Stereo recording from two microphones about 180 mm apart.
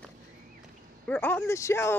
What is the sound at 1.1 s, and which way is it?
Speech, 10° left (ahead or behind).